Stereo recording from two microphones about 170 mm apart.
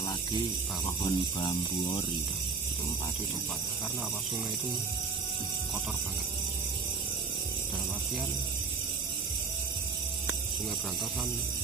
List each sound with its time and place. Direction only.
1.0 s speech: 30° left (ahead or behind)